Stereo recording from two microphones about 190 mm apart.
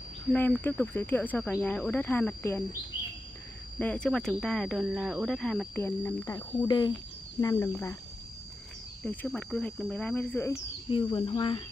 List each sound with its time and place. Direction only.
0.3 s speech: 10° left (ahead or behind)
3.7 s speech: 5° left (ahead or behind)
9.0 s speech: 5° left (ahead or behind)
10.9 s speech: 25° left (ahead or behind)